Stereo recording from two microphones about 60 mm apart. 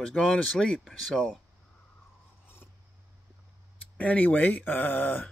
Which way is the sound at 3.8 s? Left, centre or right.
Left.